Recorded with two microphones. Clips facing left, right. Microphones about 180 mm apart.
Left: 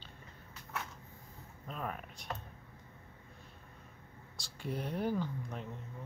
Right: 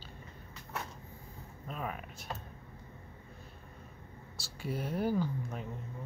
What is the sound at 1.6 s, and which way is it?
Speech, 5° right (ahead or behind).